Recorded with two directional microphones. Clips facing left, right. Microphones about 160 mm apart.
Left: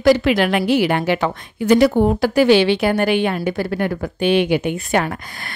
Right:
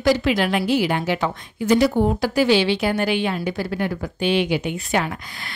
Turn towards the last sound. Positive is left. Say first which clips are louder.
# left 3 dB
turn(degrees=50)  # may be behind; listen again after turning